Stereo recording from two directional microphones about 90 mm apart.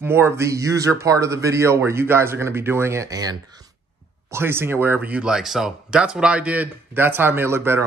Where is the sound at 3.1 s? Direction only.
45° right (ahead or behind).